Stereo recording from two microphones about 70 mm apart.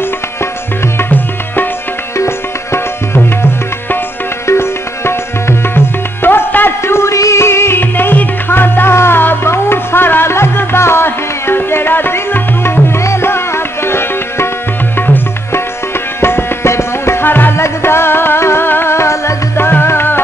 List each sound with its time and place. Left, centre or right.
0.9 s music: left
2.1 s music: left
4.5 s music: left